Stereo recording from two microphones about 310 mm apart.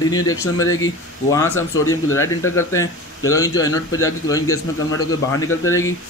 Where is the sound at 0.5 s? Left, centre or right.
Left.